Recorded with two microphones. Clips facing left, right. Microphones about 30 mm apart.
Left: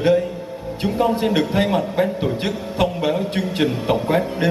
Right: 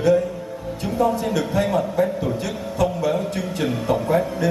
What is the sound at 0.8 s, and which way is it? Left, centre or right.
A man's voice, left.